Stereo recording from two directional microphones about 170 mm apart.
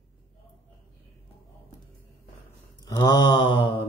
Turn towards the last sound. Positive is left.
turn(degrees=30)  # may be behind; listen again after turning